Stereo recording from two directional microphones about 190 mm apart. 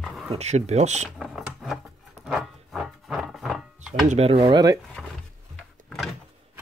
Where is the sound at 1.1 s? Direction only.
Centre (ahead or behind).